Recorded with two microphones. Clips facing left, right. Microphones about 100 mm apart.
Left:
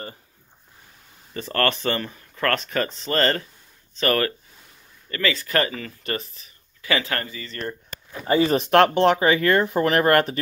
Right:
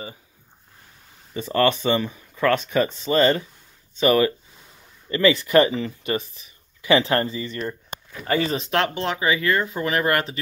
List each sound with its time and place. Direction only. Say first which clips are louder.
1.3 s speech: right 3 dB; 10° right (ahead or behind)
5.1 s speech: right 7 dB; 20° right (ahead or behind)
6.0 s speech: right 1 dB; 10° right (ahead or behind)
6.8 s speech: right 6 dB; 25° right (ahead or behind)
8.5 s speech: left 6 dB; 50° left (ahead or behind)